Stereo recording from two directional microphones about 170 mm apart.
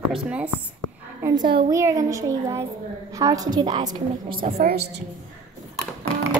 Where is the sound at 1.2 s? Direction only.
25° right (ahead or behind).